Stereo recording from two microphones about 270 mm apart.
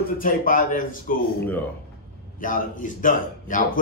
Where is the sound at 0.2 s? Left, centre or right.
Left.